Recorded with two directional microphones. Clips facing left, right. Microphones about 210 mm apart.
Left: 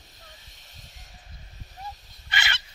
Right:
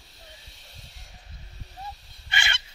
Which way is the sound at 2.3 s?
25° right (ahead or behind).